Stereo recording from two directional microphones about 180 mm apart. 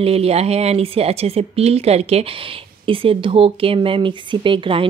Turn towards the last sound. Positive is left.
turn(degrees=-30)  # may be behind; listen again after turning